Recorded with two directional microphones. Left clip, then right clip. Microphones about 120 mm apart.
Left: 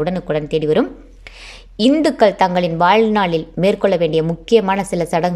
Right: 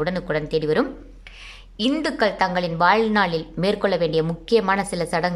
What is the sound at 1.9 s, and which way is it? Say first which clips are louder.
A woman's voice: left 7 dB; 30° left (ahead or behind).